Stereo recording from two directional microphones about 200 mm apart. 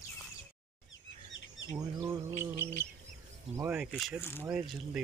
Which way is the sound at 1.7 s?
15° right (ahead or behind).